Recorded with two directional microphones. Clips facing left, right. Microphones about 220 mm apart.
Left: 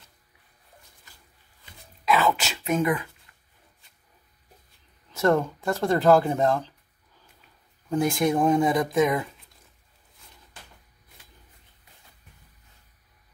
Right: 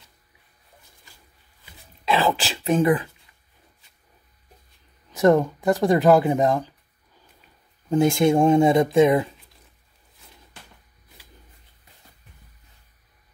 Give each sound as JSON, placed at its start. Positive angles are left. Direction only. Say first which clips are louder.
{"t": 2.0, "sound": "speech", "louder": "right 1 dB", "side_deg": -30}
{"t": 5.1, "sound": "speech", "louder": "right 5 dB", "side_deg": -15}
{"t": 7.9, "sound": "speech", "louder": "right 5 dB", "side_deg": -25}